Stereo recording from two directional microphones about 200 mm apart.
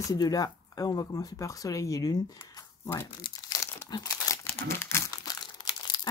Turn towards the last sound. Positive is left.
turn(degrees=20)  # may be behind; listen again after turning